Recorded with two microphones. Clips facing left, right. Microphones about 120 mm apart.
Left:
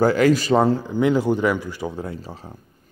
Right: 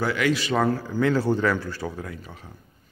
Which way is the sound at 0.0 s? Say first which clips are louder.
Left 7 dB; 40° left (ahead or behind).